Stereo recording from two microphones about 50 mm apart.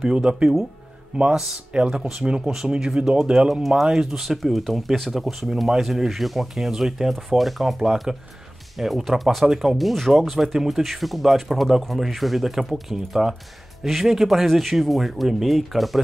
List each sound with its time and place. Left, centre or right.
0.0 s speech: centre